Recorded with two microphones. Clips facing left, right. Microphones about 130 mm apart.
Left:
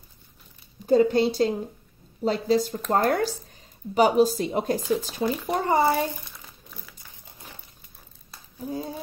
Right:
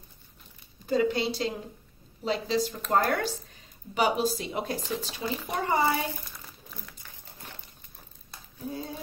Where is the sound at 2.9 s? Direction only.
30° left (ahead or behind).